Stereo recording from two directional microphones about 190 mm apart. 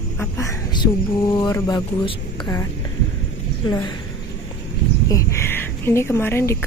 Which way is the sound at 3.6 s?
25° left (ahead or behind).